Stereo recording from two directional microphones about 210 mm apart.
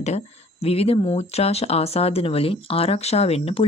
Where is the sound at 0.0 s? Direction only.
30° left (ahead or behind).